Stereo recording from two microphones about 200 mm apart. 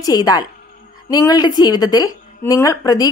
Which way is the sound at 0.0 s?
20° left (ahead or behind).